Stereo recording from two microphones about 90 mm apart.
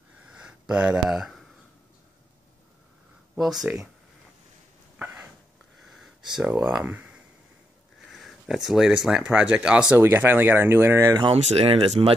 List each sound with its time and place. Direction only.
0.5 s speech: 10° right (ahead or behind)
3.3 s speech: 5° right (ahead or behind)
4.9 s a sound: 20° right (ahead or behind)
5.8 s a sound: centre (ahead or behind)
6.6 s speech: 15° right (ahead or behind)
8.1 s speech: centre (ahead or behind)
9.9 s speech: 25° right (ahead or behind)
11.1 s speech: 80° right